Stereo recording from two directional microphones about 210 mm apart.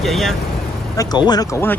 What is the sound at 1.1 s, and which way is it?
Speech, 20° left (ahead or behind).